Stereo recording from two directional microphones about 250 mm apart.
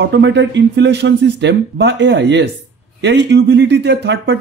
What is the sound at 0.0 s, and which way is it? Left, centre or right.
A man's voice, right.